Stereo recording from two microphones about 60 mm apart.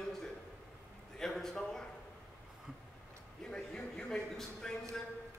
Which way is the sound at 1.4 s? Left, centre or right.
Centre.